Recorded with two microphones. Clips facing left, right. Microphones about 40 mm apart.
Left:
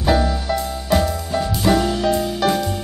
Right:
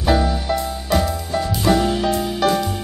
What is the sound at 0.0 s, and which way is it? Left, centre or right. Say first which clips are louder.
Music: even; centre.